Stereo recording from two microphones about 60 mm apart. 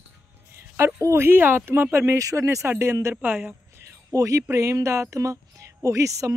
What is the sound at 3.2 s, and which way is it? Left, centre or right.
Speech, right.